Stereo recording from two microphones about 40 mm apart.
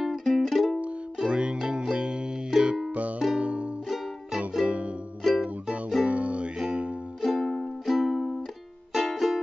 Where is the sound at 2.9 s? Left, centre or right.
Right.